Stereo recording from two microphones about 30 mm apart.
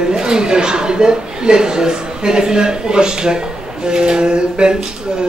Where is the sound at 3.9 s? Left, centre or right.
Right.